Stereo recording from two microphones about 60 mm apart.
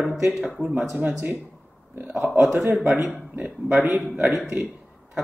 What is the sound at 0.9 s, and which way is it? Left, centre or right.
Speech, right.